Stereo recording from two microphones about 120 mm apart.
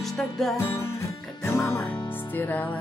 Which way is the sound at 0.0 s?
Centre (ahead or behind).